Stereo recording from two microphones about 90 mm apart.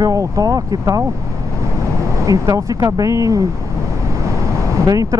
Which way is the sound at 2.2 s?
40° right (ahead or behind).